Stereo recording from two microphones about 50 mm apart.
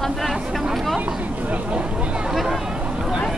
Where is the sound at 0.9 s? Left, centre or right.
Right.